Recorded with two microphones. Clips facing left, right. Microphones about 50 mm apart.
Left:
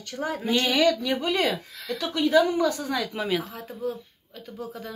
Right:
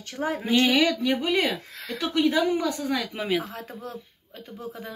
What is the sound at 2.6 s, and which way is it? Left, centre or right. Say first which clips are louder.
Speech: left 2 dB; centre.